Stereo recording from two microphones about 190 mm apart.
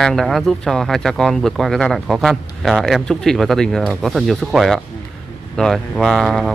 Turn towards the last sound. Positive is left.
turn(degrees=0)  # may be behind; listen again after turning